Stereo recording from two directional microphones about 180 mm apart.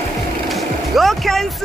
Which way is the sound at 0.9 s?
Centre (ahead or behind).